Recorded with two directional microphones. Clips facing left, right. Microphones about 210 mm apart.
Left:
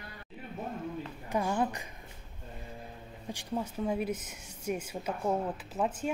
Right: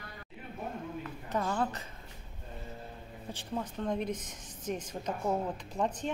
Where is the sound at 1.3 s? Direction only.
15° left (ahead or behind).